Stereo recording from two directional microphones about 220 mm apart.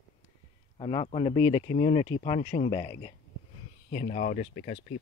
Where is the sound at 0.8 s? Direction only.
25° left (ahead or behind).